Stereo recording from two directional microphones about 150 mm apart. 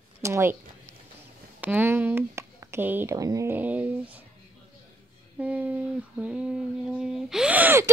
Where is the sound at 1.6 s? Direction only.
10° right (ahead or behind).